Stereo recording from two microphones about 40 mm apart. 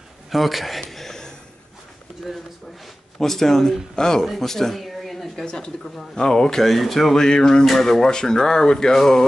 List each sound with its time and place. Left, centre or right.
0.3 s a sound: centre
3.2 s speech: centre
5.4 s speech: centre
7.2 s speech: centre
7.6 s speech: centre